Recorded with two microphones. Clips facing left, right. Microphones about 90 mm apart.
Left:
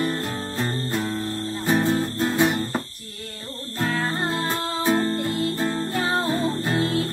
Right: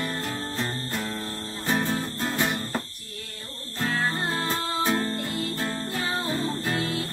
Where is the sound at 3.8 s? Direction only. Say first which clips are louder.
Left 2 dB; 45° left (ahead or behind).